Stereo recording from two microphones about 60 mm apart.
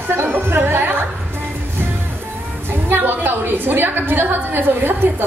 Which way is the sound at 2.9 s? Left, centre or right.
Right.